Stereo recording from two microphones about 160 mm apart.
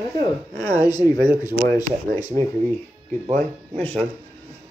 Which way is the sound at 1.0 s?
90° right.